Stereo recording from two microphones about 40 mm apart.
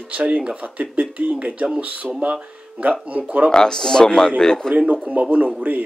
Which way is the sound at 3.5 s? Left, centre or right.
Centre.